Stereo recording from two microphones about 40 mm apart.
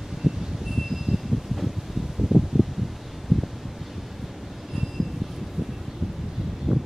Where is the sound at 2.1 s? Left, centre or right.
Centre.